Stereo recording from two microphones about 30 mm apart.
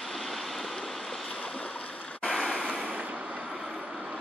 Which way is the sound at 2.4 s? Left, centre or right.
Right.